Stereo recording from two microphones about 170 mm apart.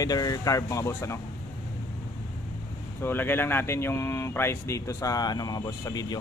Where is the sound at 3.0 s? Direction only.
10° left (ahead or behind).